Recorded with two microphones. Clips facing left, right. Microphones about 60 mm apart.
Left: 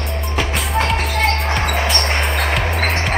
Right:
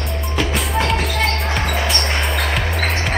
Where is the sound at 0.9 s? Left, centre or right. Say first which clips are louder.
Left 1 dB; left.